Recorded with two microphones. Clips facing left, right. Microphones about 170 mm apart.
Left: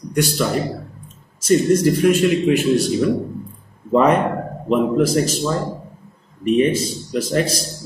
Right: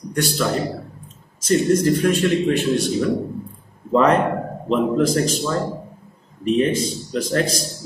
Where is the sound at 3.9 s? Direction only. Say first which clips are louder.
Left 1 dB; 10° left (ahead or behind).